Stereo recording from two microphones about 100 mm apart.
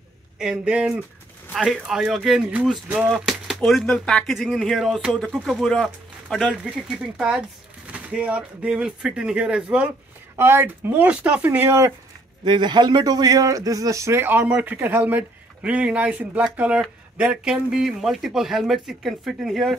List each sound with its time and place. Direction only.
0.4 s speech: 10° right (ahead or behind)
10.3 s speech: 25° right (ahead or behind)
12.4 s speech: 50° right (ahead or behind); by 19.8 s centre (ahead or behind)